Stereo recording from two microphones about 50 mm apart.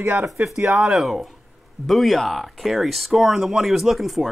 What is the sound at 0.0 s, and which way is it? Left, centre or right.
Speech, right.